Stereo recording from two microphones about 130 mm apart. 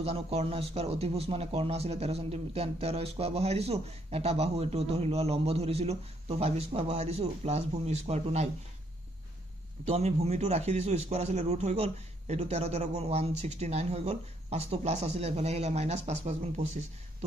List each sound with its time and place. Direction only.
0.0 s speech: 55° right (ahead or behind)
9.8 s a man's voice: 50° right (ahead or behind)